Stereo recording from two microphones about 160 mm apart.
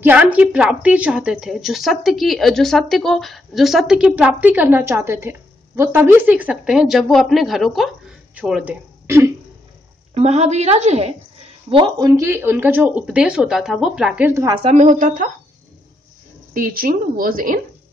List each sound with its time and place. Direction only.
0.0 s a woman's voice: 10° right (ahead or behind)
9.0 s throat clearing: 15° right (ahead or behind)
10.1 s a woman's voice: 40° right (ahead or behind)
11.7 s speech: 25° right (ahead or behind)
12.3 s speech: 15° right (ahead or behind)
14.6 s a woman's voice: 45° right (ahead or behind)
16.5 s a woman's voice: 60° right (ahead or behind)